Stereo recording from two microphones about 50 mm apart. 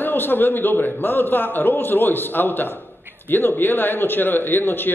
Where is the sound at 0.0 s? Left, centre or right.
Left.